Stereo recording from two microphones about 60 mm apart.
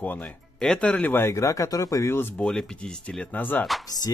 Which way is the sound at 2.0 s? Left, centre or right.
Left.